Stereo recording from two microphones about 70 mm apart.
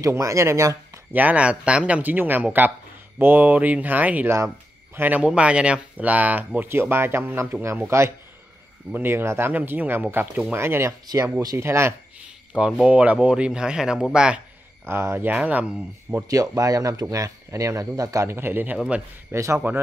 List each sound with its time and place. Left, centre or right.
0.0 s speech: right
1.1 s speech: right
5.2 s speech: centre
6.7 s a man's voice: right
9.5 s speech: right
10.6 s a man's voice: right
10.9 s speech: right
11.5 s a man's voice: right
12.5 s speech: centre
14.9 s speech: right
16.3 s speech: right
19.3 s speech: right